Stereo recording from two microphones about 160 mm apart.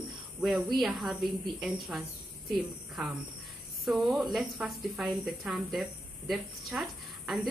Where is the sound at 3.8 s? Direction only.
Centre (ahead or behind).